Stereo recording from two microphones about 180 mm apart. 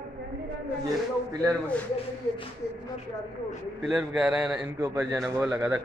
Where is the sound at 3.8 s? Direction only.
Centre (ahead or behind).